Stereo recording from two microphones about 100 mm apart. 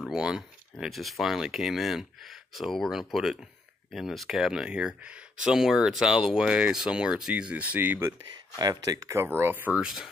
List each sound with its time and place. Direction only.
0.0 s speech: 5° right (ahead or behind)
8.5 s speech: 40° right (ahead or behind)
9.2 s speech: 20° right (ahead or behind)